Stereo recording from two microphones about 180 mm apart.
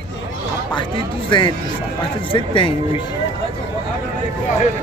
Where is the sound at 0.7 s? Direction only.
25° left (ahead or behind).